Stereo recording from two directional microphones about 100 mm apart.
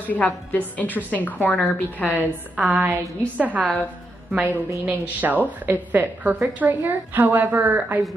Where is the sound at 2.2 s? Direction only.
15° right (ahead or behind).